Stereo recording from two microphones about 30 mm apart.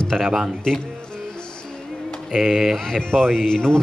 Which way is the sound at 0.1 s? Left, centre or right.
Right.